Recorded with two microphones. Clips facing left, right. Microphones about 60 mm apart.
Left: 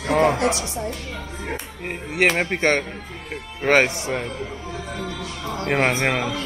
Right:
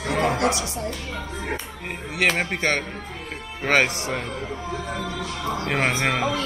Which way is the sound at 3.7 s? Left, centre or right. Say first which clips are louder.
Left 3 dB; centre.